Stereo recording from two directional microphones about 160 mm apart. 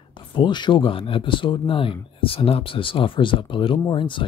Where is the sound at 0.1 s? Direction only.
30° left (ahead or behind).